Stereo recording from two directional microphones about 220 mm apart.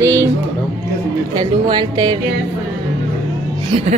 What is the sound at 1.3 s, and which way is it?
Speech, 20° right (ahead or behind).